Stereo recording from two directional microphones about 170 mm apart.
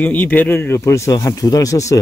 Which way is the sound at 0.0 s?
10° left (ahead or behind).